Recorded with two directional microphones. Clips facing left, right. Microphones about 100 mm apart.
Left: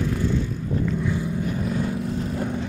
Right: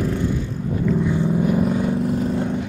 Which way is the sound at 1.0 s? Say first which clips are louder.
Right 5 dB; 20° right (ahead or behind).